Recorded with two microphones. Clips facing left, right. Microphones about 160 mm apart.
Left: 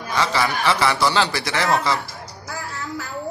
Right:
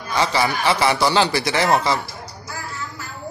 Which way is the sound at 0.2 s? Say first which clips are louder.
Right 1 dB; 20° right (ahead or behind).